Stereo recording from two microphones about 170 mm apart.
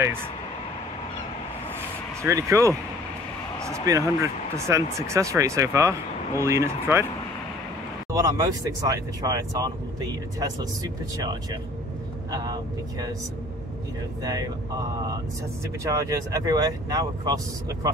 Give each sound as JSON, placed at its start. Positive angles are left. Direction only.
{"t": 2.2, "sound": "speech", "side_deg": -15}
{"t": 3.9, "sound": "speech", "side_deg": -20}
{"t": 8.1, "sound": "speech", "side_deg": -20}
{"t": 12.3, "sound": "speech", "side_deg": -20}
{"t": 14.2, "sound": "speech", "side_deg": -20}